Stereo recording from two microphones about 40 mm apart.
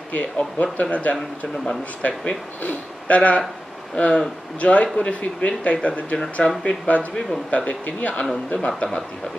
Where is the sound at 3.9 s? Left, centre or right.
Left.